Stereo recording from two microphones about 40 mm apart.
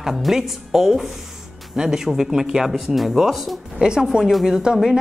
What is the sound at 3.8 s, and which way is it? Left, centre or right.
Speech, centre.